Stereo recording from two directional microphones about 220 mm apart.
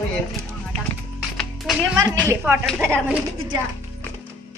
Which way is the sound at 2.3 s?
10° right (ahead or behind).